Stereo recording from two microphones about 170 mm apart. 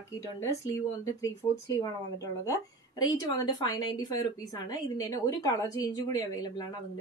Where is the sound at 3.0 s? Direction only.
20° left (ahead or behind).